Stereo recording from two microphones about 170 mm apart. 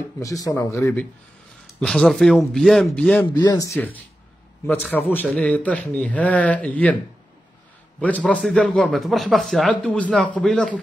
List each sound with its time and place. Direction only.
0.2 s speech: 20° left (ahead or behind)
1.8 s speech: centre (ahead or behind)
3.3 s speech: 25° left (ahead or behind)
8.3 s speech: 5° left (ahead or behind)